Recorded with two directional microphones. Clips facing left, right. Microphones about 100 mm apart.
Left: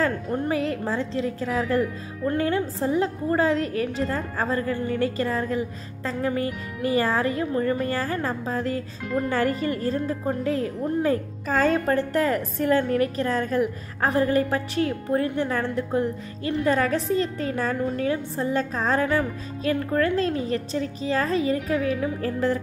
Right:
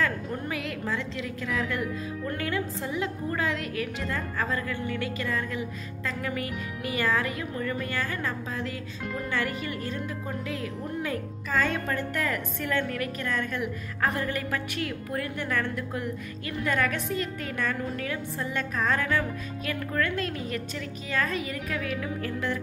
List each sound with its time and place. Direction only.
0.0 s a woman's voice: 35° left (ahead or behind)